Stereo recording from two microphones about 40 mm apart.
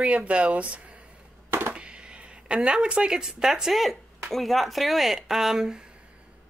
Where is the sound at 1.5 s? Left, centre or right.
Right.